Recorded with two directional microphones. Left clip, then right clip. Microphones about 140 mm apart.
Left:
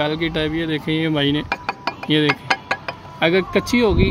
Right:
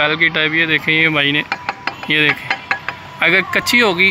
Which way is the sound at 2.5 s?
85° left.